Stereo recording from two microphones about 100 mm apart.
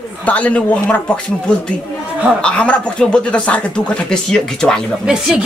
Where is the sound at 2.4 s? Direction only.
10° left (ahead or behind).